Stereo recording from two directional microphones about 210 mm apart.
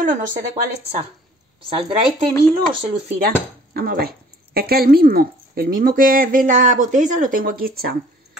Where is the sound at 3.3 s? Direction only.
45° right (ahead or behind).